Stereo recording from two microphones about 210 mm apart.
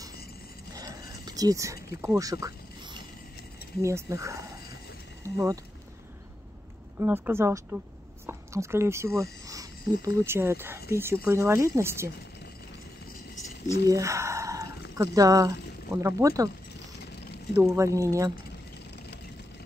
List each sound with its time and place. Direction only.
0.7 s a sound: 15° right (ahead or behind)
3.8 s speech: 15° right (ahead or behind)
7.0 s speech: 10° right (ahead or behind)
9.2 s a sound: 15° right (ahead or behind)
10.0 s speech: 10° right (ahead or behind)
13.8 s squish: 15° right (ahead or behind)
15.0 s speech: 15° right (ahead or behind)
17.6 s speech: 15° right (ahead or behind)